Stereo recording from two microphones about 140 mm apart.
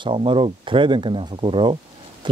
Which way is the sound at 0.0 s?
35° right (ahead or behind).